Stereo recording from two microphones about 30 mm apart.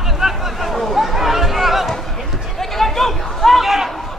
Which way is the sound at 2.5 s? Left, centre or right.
Centre.